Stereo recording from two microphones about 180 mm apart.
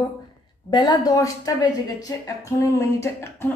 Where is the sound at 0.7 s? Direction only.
25° left (ahead or behind).